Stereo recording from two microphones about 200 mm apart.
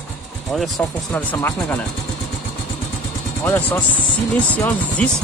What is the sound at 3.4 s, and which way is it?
Speech, 10° left (ahead or behind).